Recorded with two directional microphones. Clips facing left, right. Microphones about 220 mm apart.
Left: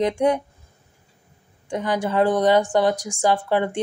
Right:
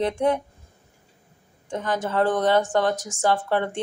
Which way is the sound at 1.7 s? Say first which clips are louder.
Left 3 dB; 15° left (ahead or behind).